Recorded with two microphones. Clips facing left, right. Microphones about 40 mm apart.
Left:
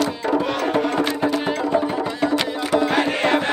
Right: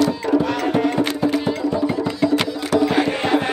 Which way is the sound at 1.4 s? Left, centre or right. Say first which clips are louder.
Even; left.